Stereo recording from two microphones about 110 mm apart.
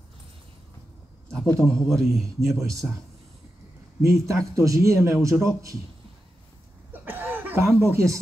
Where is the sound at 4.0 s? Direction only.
30° right (ahead or behind).